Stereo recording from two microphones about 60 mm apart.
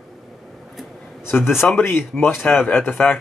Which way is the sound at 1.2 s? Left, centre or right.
Left.